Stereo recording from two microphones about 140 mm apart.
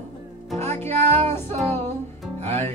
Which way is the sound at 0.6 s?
15° left (ahead or behind).